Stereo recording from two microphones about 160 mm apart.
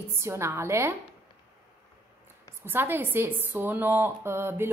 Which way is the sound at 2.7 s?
15° right (ahead or behind).